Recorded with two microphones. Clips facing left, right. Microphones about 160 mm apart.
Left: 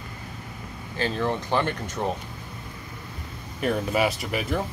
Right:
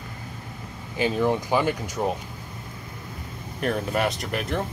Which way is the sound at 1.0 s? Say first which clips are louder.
Right 4 dB; 10° right (ahead or behind).